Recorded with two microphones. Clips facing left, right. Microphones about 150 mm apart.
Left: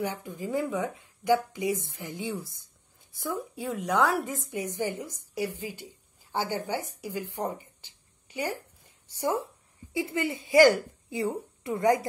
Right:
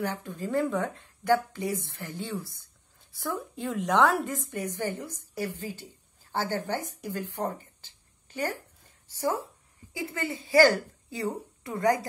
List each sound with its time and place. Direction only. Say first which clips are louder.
0.0 s speech: even; 15° left (ahead or behind)
4.5 s a woman's voice: left 1 dB; 15° left (ahead or behind)